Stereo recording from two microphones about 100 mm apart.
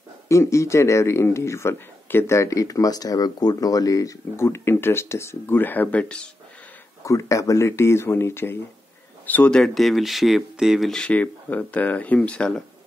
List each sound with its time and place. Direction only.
0.3 s speech: 30° left (ahead or behind); by 6.2 s 15° left (ahead or behind)
7.1 s speech: 35° left (ahead or behind); by 10.9 s 5° right (ahead or behind)
10.9 s speech: 10° left (ahead or behind)